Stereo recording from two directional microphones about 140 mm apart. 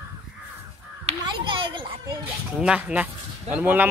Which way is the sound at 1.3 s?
35° right (ahead or behind).